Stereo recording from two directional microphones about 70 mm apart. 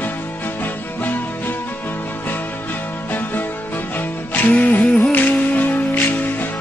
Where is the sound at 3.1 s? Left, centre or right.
Left.